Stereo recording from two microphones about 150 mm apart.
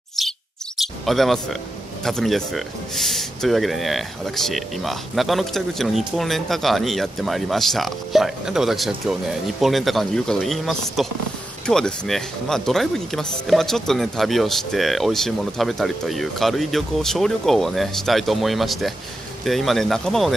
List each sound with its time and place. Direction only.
0.2 s chirp: centre (ahead or behind)
1.0 s speech: centre (ahead or behind)